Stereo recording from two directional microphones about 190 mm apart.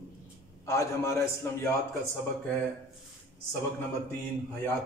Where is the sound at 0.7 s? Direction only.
15° left (ahead or behind).